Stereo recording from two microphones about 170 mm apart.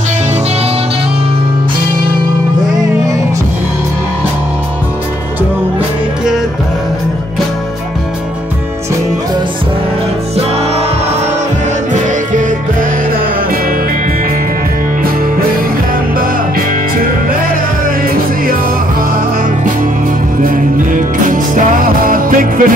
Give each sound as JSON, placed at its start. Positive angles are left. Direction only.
{"t": 11.9, "sound": "music", "side_deg": -50}
{"t": 16.2, "sound": "music", "side_deg": -60}
{"t": 20.4, "sound": "music", "side_deg": -50}